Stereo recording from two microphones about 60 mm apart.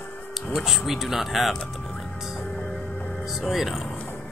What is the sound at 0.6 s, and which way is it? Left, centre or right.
Speech, centre.